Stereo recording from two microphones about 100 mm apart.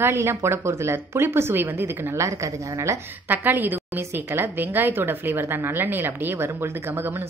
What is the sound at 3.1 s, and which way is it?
Speech, 20° right (ahead or behind).